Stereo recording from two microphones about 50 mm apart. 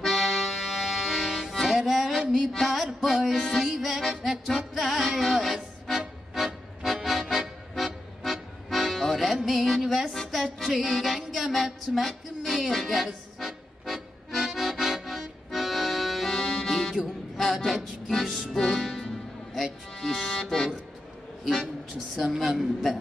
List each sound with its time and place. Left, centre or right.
0.0 s accordion: centre
2.3 s a sound: centre
3.0 s music: centre
17.4 s a sound: centre
18.0 s a woman's voice: centre
18.5 s music: centre
22.1 s a woman's voice: centre